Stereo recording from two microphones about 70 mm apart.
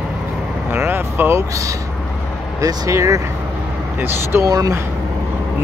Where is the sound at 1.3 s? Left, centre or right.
Right.